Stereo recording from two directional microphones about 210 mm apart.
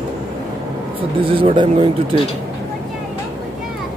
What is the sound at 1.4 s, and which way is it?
Speech, 25° right (ahead or behind).